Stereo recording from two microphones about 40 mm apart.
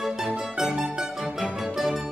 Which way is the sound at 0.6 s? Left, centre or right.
Right.